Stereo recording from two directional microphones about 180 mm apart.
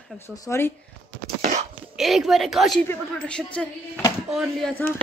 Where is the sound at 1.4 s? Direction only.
45° right (ahead or behind).